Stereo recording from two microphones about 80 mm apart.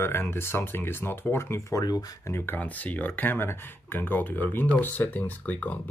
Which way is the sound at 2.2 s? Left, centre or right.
Left.